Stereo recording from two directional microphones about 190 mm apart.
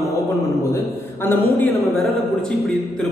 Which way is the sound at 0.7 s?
10° left (ahead or behind).